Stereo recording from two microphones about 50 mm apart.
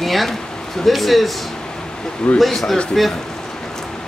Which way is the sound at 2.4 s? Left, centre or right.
Centre.